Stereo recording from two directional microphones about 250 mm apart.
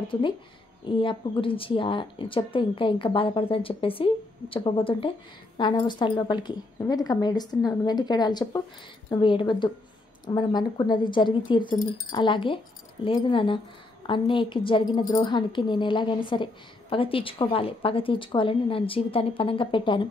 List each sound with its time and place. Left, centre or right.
0.9 s a woman's voice: left
11.7 s speech: left
12.1 s speech: centre